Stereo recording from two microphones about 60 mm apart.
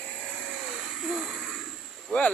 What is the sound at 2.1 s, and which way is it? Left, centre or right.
Speech, centre.